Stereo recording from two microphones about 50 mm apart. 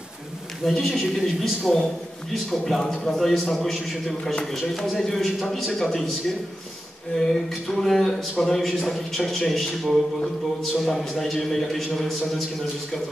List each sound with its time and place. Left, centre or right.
0.7 s a man's voice: centre